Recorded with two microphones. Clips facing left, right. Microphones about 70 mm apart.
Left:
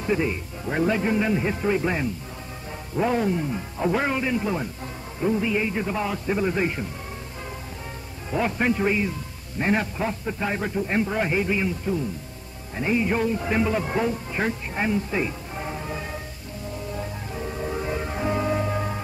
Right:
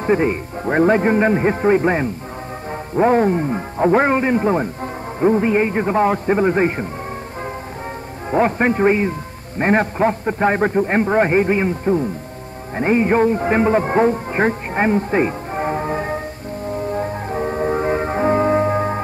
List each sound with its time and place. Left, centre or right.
0.0 s a man's voice: right
8.3 s a man's voice: right
16.9 s music: right